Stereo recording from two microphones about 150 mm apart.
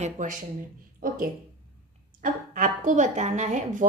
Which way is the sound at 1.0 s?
70° right (ahead or behind).